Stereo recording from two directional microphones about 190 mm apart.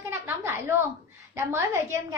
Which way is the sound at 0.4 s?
15° right (ahead or behind).